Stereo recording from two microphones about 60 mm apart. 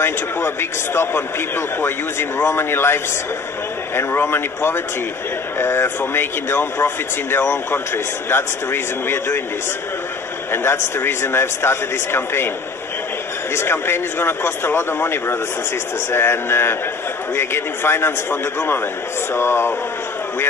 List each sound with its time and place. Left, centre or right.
0.0 s a man's voice: left
10.5 s a man's voice: left
13.6 s a man's voice: left